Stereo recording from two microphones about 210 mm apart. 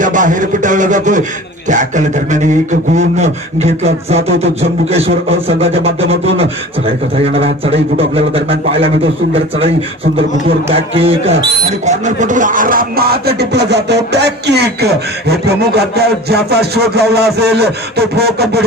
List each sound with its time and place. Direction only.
0.0 s a man's voice: 40° right (ahead or behind)
3.0 s beatboxing: 30° right (ahead or behind)
8.7 s beatboxing: 25° right (ahead or behind)
11.8 s music: 35° right (ahead or behind); by 18.6 s 50° right (ahead or behind)